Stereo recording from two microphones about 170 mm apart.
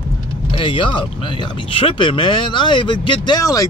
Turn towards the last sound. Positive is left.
turn(degrees=20)  # may be behind; listen again after turning